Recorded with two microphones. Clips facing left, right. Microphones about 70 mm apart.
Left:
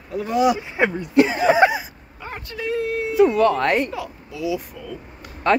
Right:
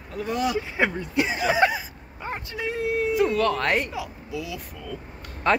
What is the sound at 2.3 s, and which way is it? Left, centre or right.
Speech, centre.